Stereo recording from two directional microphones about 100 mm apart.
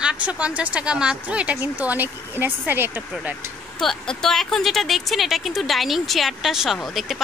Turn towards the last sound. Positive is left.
turn(degrees=0)  # may be behind; listen again after turning